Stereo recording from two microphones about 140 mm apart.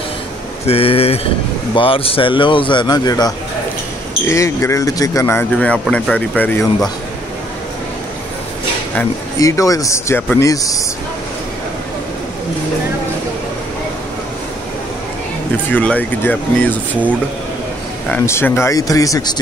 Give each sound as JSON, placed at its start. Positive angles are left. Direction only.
{"t": 0.7, "sound": "speech", "side_deg": 45}
{"t": 9.4, "sound": "speech", "side_deg": 25}
{"t": 15.7, "sound": "speech", "side_deg": 10}